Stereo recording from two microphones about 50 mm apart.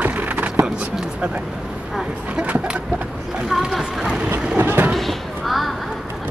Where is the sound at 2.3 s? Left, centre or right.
Right.